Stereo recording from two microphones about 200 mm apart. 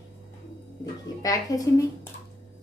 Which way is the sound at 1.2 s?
15° left (ahead or behind).